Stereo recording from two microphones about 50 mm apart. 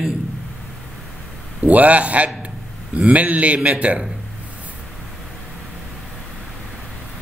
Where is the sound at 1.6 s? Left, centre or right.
Right.